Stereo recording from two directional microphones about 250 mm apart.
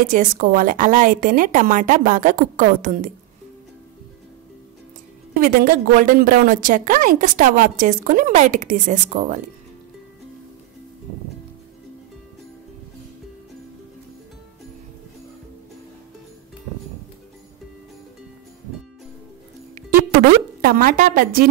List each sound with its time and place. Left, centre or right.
0.0 s a woman's voice: right
5.4 s a woman's voice: right
20.6 s a woman's voice: right